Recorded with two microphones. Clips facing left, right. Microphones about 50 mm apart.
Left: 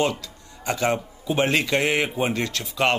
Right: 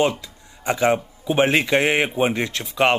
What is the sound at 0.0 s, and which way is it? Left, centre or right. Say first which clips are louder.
Speech: right 3 dB; centre.